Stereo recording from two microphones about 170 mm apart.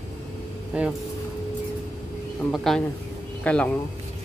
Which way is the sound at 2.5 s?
Centre (ahead or behind).